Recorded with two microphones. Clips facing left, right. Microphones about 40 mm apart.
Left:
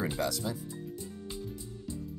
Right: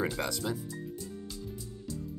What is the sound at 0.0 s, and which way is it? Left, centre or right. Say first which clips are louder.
Speech: even; right.